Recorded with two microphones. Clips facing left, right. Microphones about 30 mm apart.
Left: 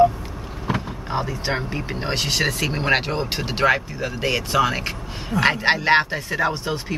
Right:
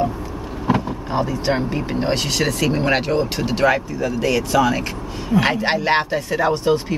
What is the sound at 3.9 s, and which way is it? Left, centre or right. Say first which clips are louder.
Speech: right 4 dB; left.